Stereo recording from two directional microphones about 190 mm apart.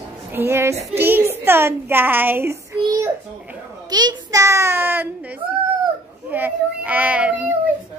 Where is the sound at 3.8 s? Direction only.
20° right (ahead or behind).